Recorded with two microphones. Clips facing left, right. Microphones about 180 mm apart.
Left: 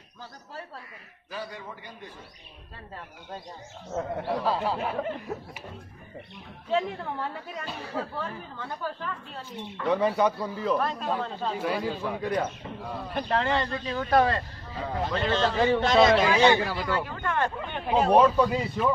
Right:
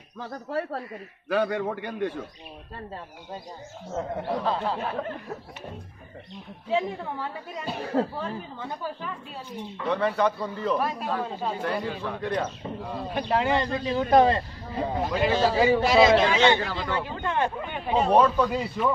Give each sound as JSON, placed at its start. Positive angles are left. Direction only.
{"t": 0.2, "sound": "a man's voice", "side_deg": -70}
{"t": 3.9, "sound": "speech", "side_deg": 5}
{"t": 6.7, "sound": "a woman's voice", "side_deg": -10}
{"t": 9.8, "sound": "speech", "side_deg": 15}
{"t": 10.8, "sound": "a woman's voice", "side_deg": -10}
{"t": 11.6, "sound": "a man's voice", "side_deg": 5}
{"t": 15.0, "sound": "a woman's voice", "side_deg": -10}
{"t": 16.5, "sound": "speech", "side_deg": 15}
{"t": 16.8, "sound": "speech", "side_deg": -20}
{"t": 17.6, "sound": "a man's voice", "side_deg": -5}